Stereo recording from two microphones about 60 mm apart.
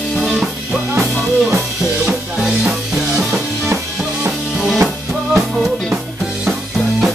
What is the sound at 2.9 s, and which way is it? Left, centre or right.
Music, centre.